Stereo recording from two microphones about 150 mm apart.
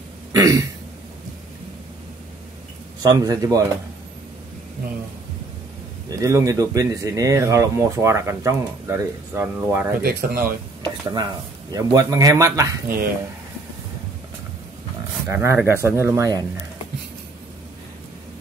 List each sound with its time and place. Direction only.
0.3 s throat clearing: 25° right (ahead or behind)
3.0 s speech: 25° right (ahead or behind)
6.0 s speech: 20° right (ahead or behind)
10.0 s speech: 75° right (ahead or behind)
10.8 s speech: 25° right (ahead or behind)
15.2 s speech: 15° right (ahead or behind)